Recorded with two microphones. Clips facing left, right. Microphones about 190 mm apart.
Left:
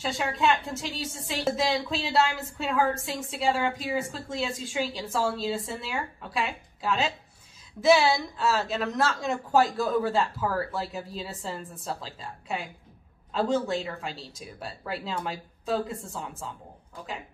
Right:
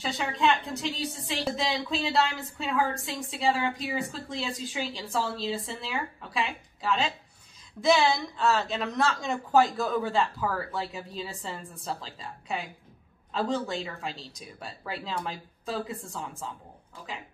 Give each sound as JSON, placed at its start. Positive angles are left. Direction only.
{"t": 0.2, "sound": "a woman's voice", "side_deg": 0}
{"t": 1.3, "sound": "a woman's voice", "side_deg": 45}
{"t": 1.9, "sound": "a woman's voice", "side_deg": 0}